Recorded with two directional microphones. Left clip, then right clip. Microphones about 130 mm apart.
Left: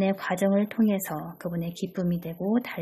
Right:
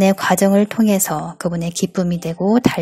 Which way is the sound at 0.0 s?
40° right (ahead or behind).